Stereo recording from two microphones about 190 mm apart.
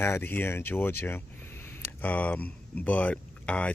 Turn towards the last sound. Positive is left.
turn(degrees=5)  # may be behind; listen again after turning